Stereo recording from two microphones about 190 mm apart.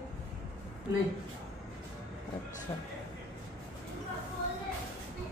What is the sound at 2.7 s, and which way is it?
Speech, 15° left (ahead or behind).